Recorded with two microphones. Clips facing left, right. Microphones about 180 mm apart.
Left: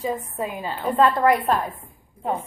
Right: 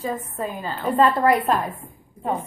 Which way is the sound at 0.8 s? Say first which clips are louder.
Even; centre (ahead or behind).